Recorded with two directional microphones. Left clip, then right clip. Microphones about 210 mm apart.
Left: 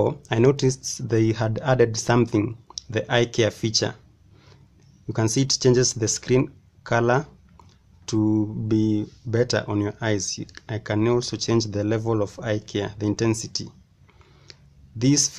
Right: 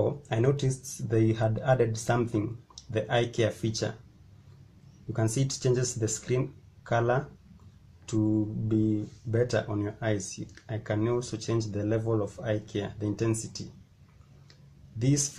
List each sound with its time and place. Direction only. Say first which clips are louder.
0.3 s speech: left 9 dB; 30° left (ahead or behind)
5.1 s speech: left 8 dB; 30° left (ahead or behind)
14.5 s a sound: left 8 dB; 30° left (ahead or behind)